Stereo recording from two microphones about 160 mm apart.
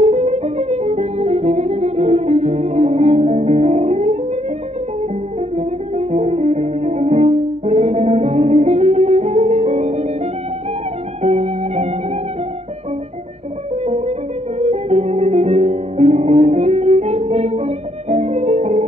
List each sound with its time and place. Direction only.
0.0 s music: 45° right (ahead or behind)
5.6 s music: 40° right (ahead or behind)
11.2 s music: 40° right (ahead or behind)
13.8 s music: 45° right (ahead or behind)